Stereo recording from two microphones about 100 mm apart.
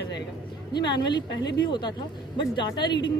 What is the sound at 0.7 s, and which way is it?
Speech, 45° left (ahead or behind).